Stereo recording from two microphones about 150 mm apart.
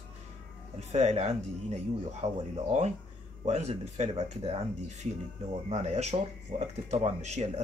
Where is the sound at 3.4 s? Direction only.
45° right (ahead or behind).